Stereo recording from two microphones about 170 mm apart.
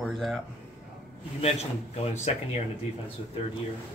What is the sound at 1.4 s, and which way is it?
A man's voice, 40° left (ahead or behind).